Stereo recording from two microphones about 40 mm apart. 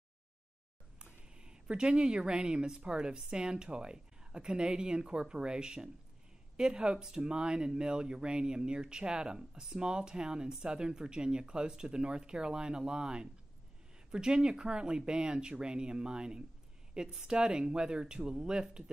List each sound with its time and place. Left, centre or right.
1.3 s speech: right